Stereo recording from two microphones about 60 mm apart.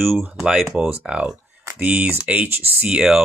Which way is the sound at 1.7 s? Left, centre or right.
Right.